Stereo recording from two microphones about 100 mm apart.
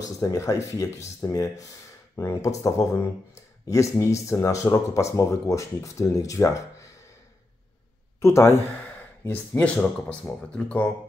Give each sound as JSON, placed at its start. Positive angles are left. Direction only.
{"t": 0.2, "sound": "speech", "side_deg": 35}
{"t": 8.2, "sound": "speech", "side_deg": 30}